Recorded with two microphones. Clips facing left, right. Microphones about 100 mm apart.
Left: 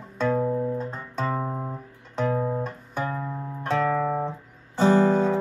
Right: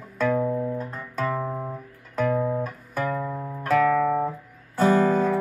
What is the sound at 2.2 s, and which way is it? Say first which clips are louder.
Guitar: right 2 dB; 25° left (ahead or behind).